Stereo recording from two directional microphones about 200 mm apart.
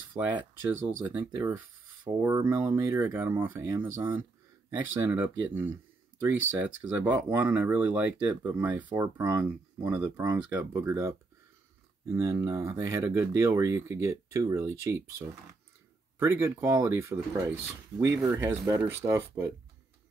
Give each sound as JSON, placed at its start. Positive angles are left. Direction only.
{"t": 0.2, "sound": "speech", "side_deg": -10}